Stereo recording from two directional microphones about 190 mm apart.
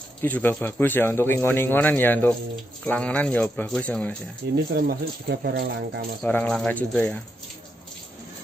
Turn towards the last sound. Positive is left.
turn(degrees=5)  # may be behind; listen again after turning